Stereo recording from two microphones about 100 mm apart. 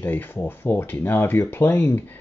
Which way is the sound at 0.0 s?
20° left (ahead or behind).